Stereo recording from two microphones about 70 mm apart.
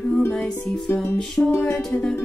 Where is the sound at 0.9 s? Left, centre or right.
Left.